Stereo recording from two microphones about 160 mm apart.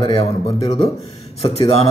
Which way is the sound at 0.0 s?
40° left (ahead or behind).